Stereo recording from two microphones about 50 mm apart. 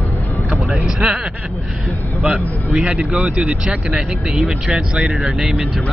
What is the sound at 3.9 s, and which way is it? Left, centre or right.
Speech, centre.